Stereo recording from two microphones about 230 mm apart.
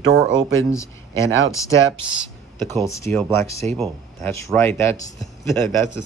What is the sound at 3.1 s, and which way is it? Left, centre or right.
Speech, centre.